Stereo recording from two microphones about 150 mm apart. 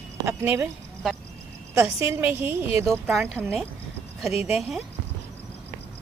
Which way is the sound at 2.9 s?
Centre (ahead or behind).